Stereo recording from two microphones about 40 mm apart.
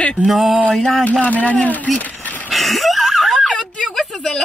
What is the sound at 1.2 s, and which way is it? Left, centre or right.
Speech, left.